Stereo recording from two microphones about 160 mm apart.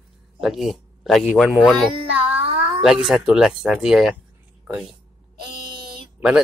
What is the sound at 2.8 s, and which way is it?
Speech, centre (ahead or behind).